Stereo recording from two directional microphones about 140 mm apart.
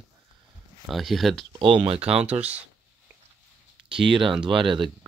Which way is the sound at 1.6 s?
40° right (ahead or behind).